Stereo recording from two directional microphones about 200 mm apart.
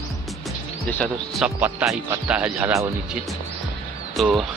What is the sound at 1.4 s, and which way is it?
Speech, 5° right (ahead or behind).